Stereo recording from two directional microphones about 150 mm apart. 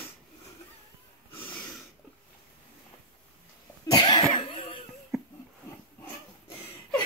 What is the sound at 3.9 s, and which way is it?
Cough, 30° left (ahead or behind).